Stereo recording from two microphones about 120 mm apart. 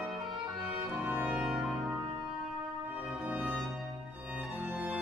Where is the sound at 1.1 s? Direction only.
15° right (ahead or behind).